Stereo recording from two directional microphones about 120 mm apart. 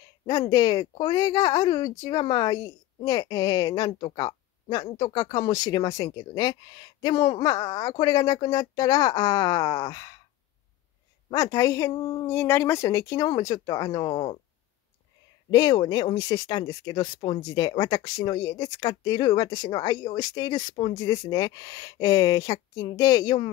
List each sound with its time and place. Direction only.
0.3 s a woman's voice: 30° left (ahead or behind)
11.3 s speech: 30° left (ahead or behind)
15.5 s a woman's voice: 35° left (ahead or behind)